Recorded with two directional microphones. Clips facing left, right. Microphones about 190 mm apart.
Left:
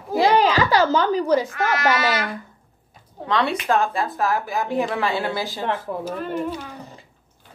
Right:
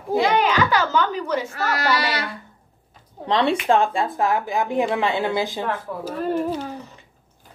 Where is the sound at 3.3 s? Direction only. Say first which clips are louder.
Right 2 dB; 30° right (ahead or behind).